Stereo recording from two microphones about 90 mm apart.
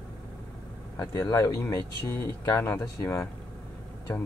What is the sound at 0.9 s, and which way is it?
Speech, 35° left (ahead or behind).